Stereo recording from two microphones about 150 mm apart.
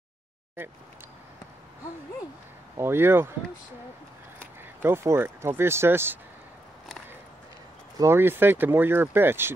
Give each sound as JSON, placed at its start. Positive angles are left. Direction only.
{"t": 2.8, "sound": "speech", "side_deg": -15}
{"t": 4.8, "sound": "speech", "side_deg": -15}
{"t": 8.0, "sound": "speech", "side_deg": -15}